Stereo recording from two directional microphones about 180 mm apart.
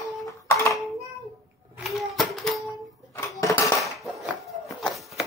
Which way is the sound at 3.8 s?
Centre (ahead or behind).